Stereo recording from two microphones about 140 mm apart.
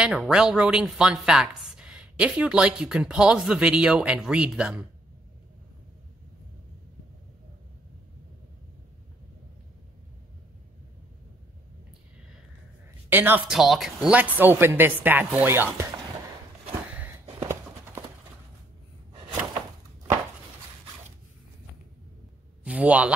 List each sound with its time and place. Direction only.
0.0 s a woman's voice: 5° right (ahead or behind)
13.1 s a woman's voice: 15° right (ahead or behind)
13.5 s a woman's voice: centre (ahead or behind); by 15.9 s 15° right (ahead or behind)
16.9 s a sound: 15° right (ahead or behind)
22.6 s speech: 10° right (ahead or behind)